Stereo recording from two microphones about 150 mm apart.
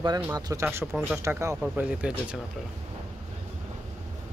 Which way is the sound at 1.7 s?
5° right (ahead or behind).